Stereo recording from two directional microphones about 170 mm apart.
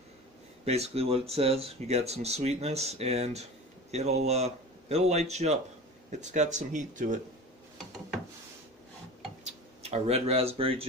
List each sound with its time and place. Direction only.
0.7 s speech: 40° right (ahead or behind)
9.4 s speech: 40° right (ahead or behind)